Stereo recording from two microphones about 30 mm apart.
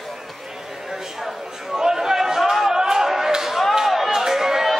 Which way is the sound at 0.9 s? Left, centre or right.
Centre.